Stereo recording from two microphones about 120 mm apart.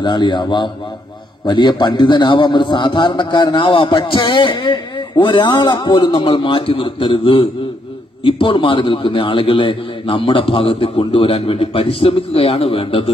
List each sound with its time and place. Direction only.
0.0 s a man's voice: 40° left (ahead or behind)